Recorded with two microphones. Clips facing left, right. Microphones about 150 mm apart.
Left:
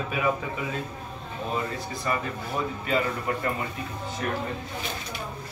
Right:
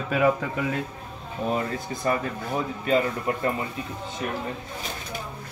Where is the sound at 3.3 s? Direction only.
25° right (ahead or behind).